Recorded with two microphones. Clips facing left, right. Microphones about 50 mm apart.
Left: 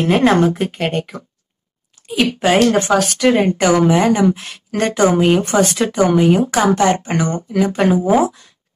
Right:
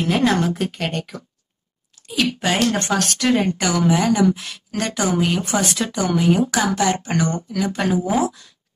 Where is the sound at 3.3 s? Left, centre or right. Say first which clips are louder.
Left 6 dB; left.